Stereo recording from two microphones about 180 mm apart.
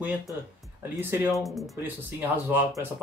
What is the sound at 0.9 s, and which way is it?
Speech, 10° right (ahead or behind).